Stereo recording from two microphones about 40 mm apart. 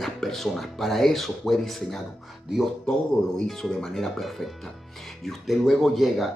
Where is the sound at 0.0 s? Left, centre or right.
Centre.